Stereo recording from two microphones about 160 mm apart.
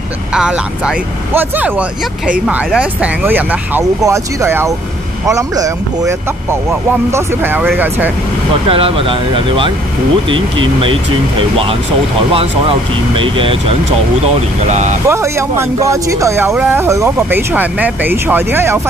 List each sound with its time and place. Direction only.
0.3 s speech: 5° right (ahead or behind)
8.6 s speech: 35° right (ahead or behind)
12.4 s speech: 35° right (ahead or behind)
14.7 s speech: 50° right (ahead or behind)
15.0 s speech: 15° right (ahead or behind)